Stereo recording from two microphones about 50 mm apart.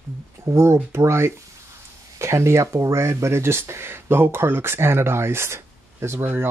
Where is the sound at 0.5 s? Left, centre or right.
Right.